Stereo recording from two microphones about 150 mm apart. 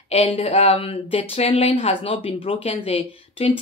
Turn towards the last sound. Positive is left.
turn(degrees=40)  # may be behind; listen again after turning